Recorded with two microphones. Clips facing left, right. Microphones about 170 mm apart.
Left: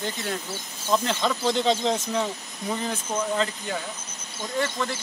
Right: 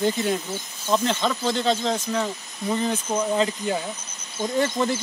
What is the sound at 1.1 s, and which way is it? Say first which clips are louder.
Speech: right 1 dB; centre (ahead or behind).